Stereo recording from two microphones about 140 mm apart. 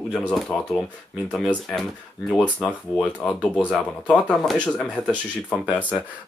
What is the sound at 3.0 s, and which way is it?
Speech, 10° left (ahead or behind).